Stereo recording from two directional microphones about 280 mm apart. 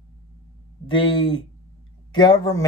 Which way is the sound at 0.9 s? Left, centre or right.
Centre.